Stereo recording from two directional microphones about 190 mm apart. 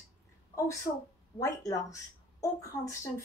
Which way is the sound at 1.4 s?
15° left (ahead or behind).